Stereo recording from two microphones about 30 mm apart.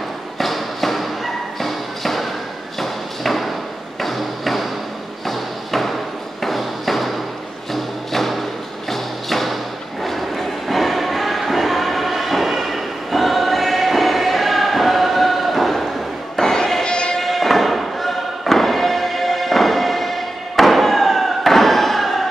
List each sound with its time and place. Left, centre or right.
0.4 s thump: centre
2.8 s a sound: centre
5.2 s thump: centre
6.4 s a sound: centre
7.7 s music: centre
8.9 s thump: centre
10.0 s music: centre
16.3 s thump: centre
16.8 s music: left
17.2 s thump: centre